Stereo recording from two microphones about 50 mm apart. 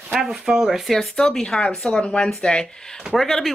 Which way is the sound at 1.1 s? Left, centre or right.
Centre.